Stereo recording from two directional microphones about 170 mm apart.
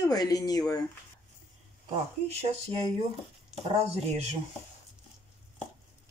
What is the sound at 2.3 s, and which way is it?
Speech, 40° right (ahead or behind).